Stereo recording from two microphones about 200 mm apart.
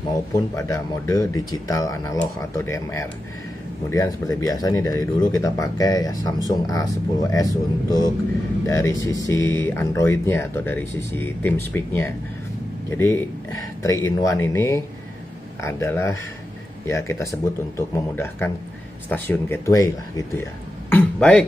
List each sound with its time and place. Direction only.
0.6 s speech: 15° left (ahead or behind)
20.9 s speech: 5° left (ahead or behind)